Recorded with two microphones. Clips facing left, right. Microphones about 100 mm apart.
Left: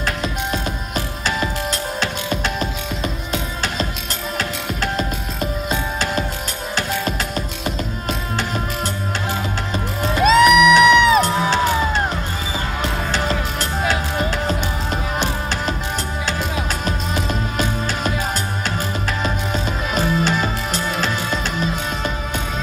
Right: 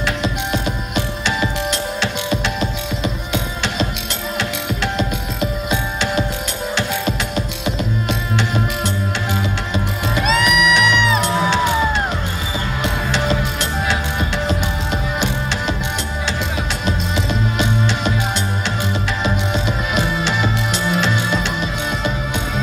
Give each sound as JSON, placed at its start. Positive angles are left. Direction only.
{"t": 0.0, "sound": "music", "side_deg": 40}
{"t": 1.7, "sound": "music", "side_deg": 40}
{"t": 5.7, "sound": "music", "side_deg": 40}
{"t": 16.8, "sound": "music", "side_deg": 40}
{"t": 19.2, "sound": "music", "side_deg": 40}